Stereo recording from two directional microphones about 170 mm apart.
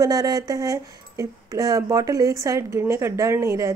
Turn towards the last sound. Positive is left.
turn(degrees=-15)  # may be behind; listen again after turning